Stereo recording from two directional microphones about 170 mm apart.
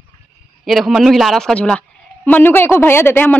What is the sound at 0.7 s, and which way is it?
A woman's voice, centre (ahead or behind).